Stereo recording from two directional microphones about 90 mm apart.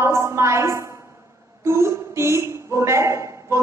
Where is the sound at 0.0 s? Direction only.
30° right (ahead or behind).